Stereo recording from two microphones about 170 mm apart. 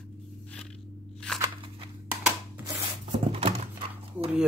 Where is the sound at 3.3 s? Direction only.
35° right (ahead or behind).